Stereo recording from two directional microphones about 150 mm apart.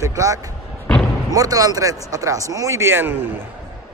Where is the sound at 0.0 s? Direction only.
20° right (ahead or behind).